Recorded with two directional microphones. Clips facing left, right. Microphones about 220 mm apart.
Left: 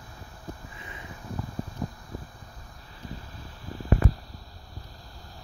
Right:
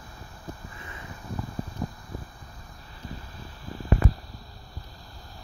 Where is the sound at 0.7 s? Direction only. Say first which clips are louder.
Right 1 dB; 20° left (ahead or behind).